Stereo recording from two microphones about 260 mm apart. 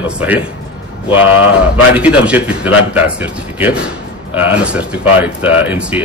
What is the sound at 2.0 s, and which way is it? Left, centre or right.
Speech, centre.